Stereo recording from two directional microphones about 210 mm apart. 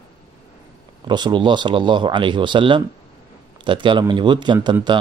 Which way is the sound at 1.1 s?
20° right (ahead or behind).